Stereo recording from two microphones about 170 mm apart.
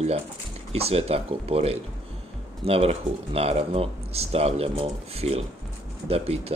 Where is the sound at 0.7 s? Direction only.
35° right (ahead or behind).